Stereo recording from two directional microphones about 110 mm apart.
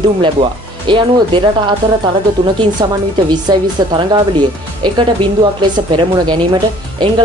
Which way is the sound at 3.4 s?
40° right (ahead or behind).